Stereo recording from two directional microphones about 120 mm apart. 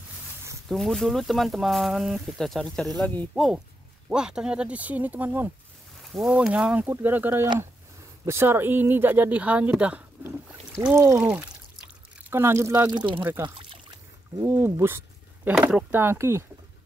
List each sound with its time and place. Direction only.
0.7 s speech: centre (ahead or behind); by 5.5 s 15° right (ahead or behind)
6.1 s speech: 5° right (ahead or behind)
10.9 s speech: 20° right (ahead or behind)
11.1 s speech: 10° right (ahead or behind)
12.9 s speech: 40° right (ahead or behind)
13.4 s pour: 40° right (ahead or behind)
14.4 s speech: 20° right (ahead or behind)